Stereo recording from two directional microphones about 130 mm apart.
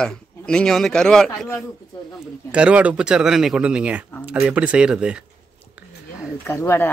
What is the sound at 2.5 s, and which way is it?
Speech, 10° right (ahead or behind).